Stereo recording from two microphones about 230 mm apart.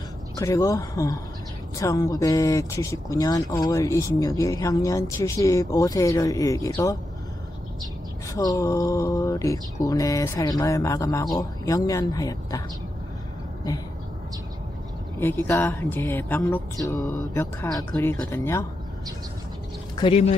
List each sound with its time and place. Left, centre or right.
0.4 s speech: centre
8.3 s speech: centre
15.1 s speech: centre
20.0 s speech: left